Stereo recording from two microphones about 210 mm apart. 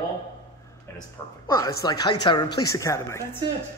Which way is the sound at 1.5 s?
15° left (ahead or behind).